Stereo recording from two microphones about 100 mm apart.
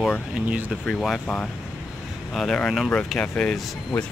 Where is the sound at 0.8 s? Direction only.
5° left (ahead or behind).